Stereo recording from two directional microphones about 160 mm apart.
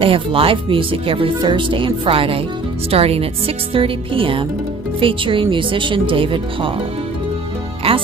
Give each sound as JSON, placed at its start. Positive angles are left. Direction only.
{"t": 0.0, "sound": "speech", "side_deg": -35}
{"t": 7.8, "sound": "speech", "side_deg": -35}